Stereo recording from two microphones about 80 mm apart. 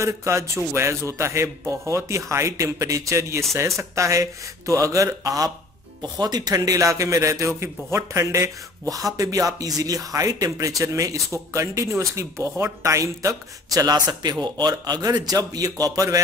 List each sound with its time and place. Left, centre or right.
0.0 s a man's voice: right